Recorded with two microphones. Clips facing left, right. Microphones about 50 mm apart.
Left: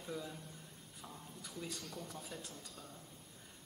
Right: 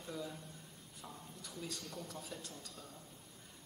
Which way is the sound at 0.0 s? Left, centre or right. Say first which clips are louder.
Even; centre.